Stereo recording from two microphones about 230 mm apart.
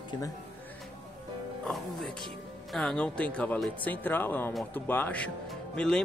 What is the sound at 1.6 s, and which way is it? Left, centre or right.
Speech, centre.